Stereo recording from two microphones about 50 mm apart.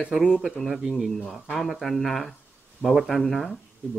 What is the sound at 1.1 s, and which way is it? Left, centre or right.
A man's voice, centre.